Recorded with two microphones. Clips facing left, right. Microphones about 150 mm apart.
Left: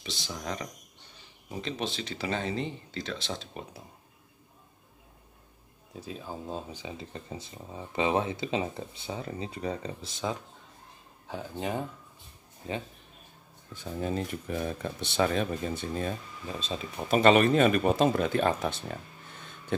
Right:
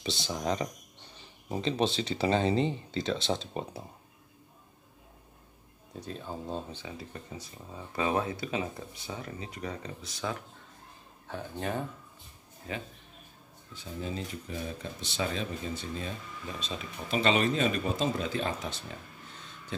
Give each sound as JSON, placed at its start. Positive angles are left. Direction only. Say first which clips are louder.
{"t": 0.0, "sound": "speech", "louder": "right 5 dB", "side_deg": -30}
{"t": 5.9, "sound": "speech", "louder": "even", "side_deg": 5}
{"t": 6.8, "sound": "speech", "louder": "left 2 dB", "side_deg": 25}
{"t": 13.7, "sound": "speech", "louder": "left 5 dB", "side_deg": 55}
{"t": 16.5, "sound": "speech", "louder": "left 5 dB", "side_deg": 30}
{"t": 17.1, "sound": "speech", "louder": "left 6 dB", "side_deg": 55}